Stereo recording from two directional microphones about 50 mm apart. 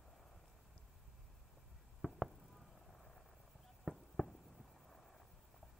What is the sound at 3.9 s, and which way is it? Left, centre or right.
Fireworks, centre.